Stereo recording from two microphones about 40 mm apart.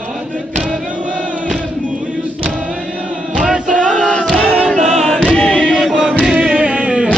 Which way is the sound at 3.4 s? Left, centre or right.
Right.